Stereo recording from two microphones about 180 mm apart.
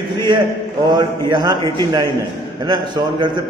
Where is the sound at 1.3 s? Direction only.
25° right (ahead or behind).